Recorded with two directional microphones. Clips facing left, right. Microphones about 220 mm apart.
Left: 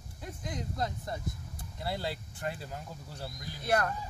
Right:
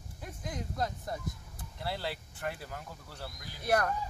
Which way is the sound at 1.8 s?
20° left (ahead or behind).